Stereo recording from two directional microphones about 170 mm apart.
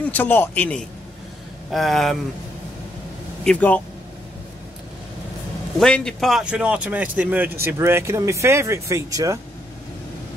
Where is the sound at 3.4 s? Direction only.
10° left (ahead or behind).